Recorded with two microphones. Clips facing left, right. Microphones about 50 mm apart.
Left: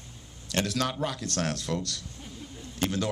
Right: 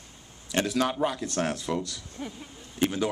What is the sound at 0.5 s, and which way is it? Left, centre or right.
Speech, centre.